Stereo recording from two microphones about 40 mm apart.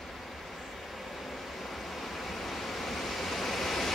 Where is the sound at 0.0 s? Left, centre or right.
Centre.